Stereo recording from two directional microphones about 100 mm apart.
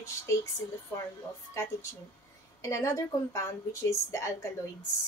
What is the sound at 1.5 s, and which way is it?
A woman's voice, 30° left (ahead or behind).